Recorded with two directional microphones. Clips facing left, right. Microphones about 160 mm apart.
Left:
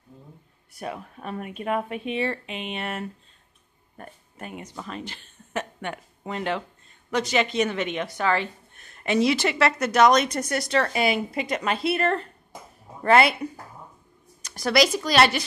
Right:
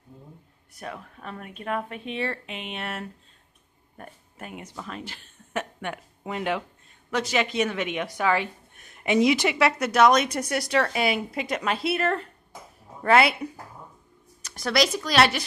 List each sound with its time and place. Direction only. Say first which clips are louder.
0.7 s speech: left 4 dB; 15° left (ahead or behind)